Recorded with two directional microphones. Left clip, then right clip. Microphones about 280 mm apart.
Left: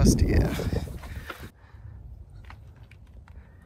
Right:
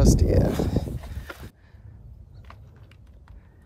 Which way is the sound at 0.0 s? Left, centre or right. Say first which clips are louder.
Right 3 dB; right.